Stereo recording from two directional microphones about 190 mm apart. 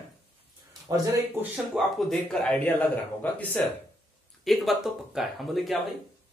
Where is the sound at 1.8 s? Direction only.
Centre (ahead or behind).